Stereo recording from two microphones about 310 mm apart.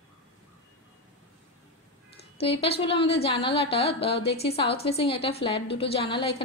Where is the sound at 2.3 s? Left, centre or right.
Centre.